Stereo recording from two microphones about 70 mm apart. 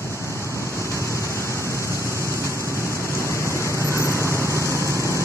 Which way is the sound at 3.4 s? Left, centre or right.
Right.